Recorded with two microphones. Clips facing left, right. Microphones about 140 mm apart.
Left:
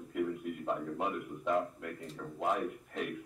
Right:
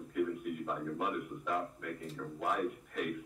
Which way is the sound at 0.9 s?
25° left (ahead or behind).